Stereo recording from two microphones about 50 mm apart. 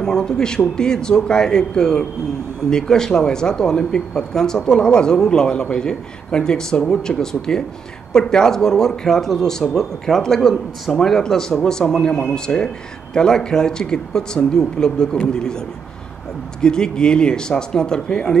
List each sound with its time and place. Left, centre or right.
0.0 s speech: centre
16.6 s speech: centre